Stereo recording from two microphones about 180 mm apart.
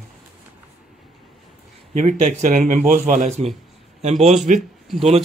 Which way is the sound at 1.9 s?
45° right (ahead or behind).